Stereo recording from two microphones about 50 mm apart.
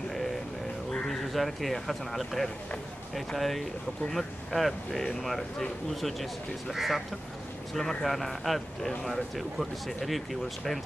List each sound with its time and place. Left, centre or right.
1.3 s speech: centre